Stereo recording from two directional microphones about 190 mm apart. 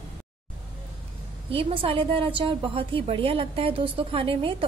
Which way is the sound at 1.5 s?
30° right (ahead or behind).